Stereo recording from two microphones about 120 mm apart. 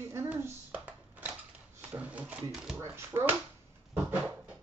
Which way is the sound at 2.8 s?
20° right (ahead or behind).